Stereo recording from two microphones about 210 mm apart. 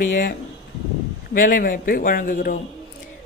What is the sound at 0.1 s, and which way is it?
A man's voice, 40° left (ahead or behind).